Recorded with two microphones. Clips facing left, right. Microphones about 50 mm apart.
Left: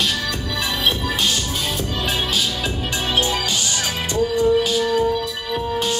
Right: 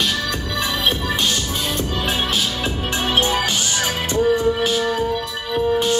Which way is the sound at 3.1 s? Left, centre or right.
Right.